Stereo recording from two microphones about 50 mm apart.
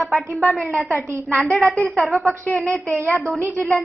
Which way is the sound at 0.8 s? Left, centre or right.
Right.